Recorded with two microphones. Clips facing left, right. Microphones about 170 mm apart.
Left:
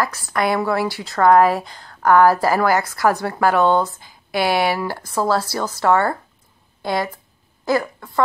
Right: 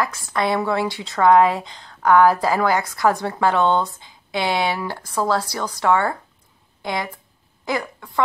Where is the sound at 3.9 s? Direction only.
20° right (ahead or behind).